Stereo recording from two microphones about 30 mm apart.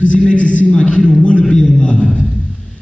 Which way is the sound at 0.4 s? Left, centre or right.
Left.